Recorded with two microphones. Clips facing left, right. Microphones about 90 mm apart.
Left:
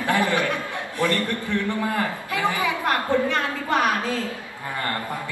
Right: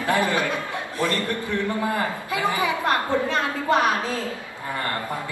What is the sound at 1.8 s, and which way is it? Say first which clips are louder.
A woman's voice: even; 20° right (ahead or behind).